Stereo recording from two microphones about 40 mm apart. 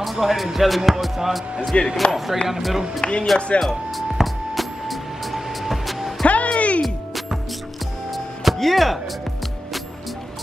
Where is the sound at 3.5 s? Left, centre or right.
Left.